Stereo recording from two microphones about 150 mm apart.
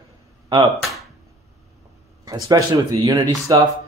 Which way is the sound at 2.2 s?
25° right (ahead or behind).